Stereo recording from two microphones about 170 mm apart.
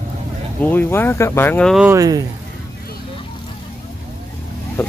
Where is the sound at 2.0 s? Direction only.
20° right (ahead or behind).